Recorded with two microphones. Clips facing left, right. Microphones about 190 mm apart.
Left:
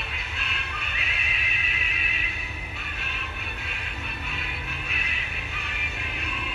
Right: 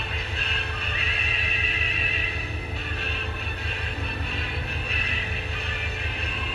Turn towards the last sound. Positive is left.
turn(degrees=-35)  # may be behind; listen again after turning